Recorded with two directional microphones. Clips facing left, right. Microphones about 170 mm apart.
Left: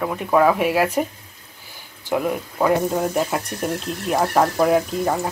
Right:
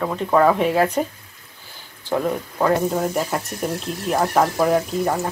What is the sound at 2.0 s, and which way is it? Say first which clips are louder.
Speech: even; 10° left (ahead or behind).